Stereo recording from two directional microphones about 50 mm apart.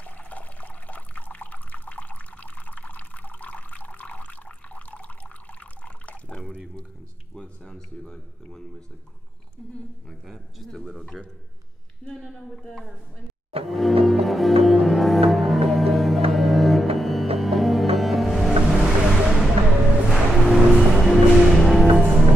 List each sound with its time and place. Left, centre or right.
0.0 s water: left
7.3 s speech: centre
10.2 s a man's voice: centre
12.0 s speech: centre
13.7 s music: centre